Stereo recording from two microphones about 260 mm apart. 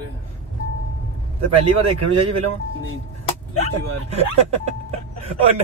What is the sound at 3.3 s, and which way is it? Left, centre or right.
Vehicle, left.